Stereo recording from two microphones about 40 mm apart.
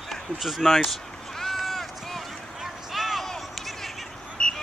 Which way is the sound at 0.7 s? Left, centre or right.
Centre.